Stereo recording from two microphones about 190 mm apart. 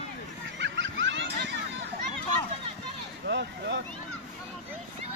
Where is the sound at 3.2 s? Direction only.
65° right (ahead or behind).